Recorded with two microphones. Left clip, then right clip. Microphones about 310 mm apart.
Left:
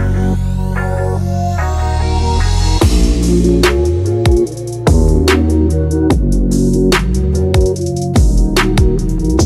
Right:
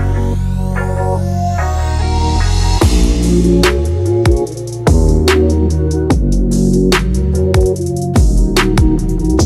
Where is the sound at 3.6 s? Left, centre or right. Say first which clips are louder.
Left 1 dB; centre.